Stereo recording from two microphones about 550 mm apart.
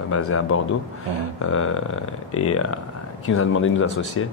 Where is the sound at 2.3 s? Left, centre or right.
Left.